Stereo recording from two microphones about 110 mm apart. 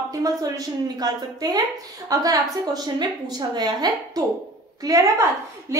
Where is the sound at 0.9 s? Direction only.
35° right (ahead or behind).